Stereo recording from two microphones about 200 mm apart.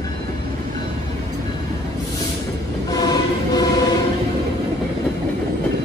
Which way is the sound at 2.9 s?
20° left (ahead or behind).